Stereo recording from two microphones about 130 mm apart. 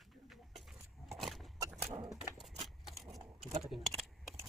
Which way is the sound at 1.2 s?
Centre (ahead or behind).